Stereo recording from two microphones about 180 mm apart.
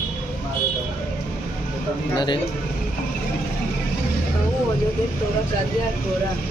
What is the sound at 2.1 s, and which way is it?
Speech, 25° left (ahead or behind).